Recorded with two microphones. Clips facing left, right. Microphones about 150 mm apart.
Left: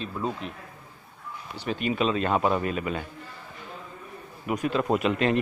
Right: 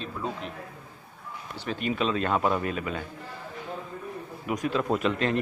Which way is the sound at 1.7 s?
5° left (ahead or behind).